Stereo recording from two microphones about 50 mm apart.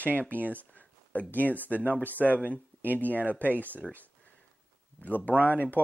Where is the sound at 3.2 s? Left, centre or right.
Left.